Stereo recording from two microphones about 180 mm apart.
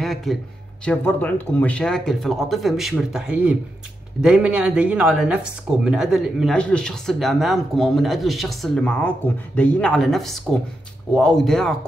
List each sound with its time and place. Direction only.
0.0 s speech: centre (ahead or behind)